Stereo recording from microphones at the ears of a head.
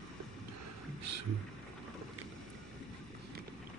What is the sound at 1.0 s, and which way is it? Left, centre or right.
Speech, right.